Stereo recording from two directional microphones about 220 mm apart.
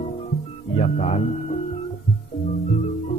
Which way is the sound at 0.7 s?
30° left (ahead or behind).